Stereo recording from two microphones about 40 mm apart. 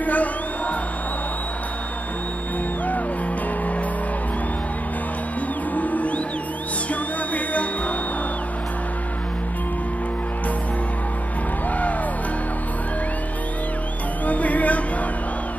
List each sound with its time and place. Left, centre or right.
0.0 s music: left
5.8 s music: left
14.2 s music: left